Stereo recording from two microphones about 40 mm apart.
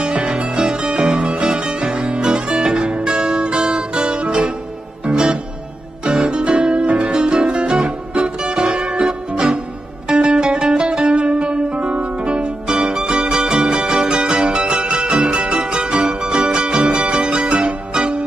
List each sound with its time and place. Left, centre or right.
0.0 s music: right